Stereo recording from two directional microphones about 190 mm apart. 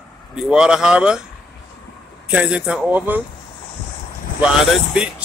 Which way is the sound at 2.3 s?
5° right (ahead or behind).